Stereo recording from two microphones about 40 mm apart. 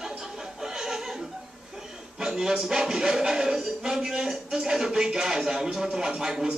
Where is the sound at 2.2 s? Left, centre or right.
Centre.